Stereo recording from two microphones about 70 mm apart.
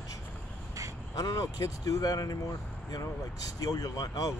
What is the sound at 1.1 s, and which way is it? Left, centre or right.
Speech, left.